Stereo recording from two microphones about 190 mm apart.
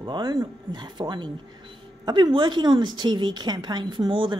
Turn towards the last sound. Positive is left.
turn(degrees=-25)  # may be behind; listen again after turning